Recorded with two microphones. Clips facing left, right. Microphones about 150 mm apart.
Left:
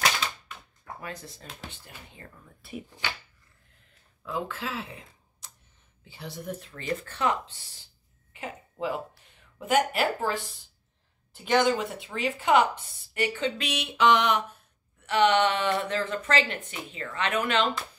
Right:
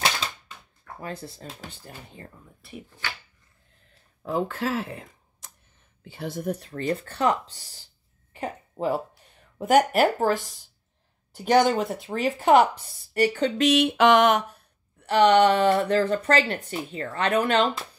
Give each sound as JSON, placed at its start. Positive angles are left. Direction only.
{"t": 1.0, "sound": "speech", "side_deg": -30}
{"t": 4.2, "sound": "speech", "side_deg": -45}
{"t": 8.3, "sound": "a sound", "side_deg": -40}
{"t": 9.6, "sound": "speech", "side_deg": -40}
{"t": 15.0, "sound": "speech", "side_deg": -35}